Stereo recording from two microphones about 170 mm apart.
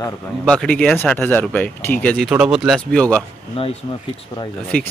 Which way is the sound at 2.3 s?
5° right (ahead or behind).